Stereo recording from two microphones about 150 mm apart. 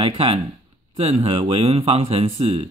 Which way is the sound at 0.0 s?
40° right (ahead or behind).